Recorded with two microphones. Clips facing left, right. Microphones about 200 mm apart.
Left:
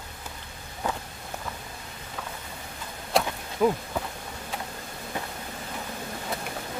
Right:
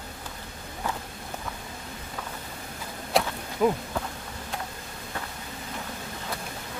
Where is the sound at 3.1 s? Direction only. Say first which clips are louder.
Even; centre (ahead or behind).